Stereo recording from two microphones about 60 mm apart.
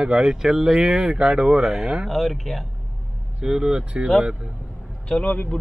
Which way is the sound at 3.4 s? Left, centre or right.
Centre.